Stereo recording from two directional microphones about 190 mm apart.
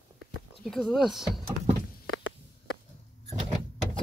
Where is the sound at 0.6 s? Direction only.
Centre (ahead or behind).